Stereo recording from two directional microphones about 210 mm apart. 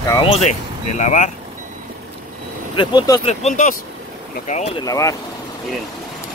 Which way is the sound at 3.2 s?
35° left (ahead or behind).